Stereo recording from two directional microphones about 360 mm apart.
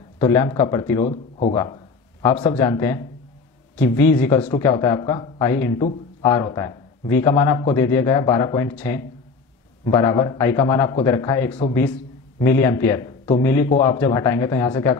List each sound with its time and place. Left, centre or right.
0.2 s a man's voice: centre
13.7 s a man's voice: centre
13.9 s speech: centre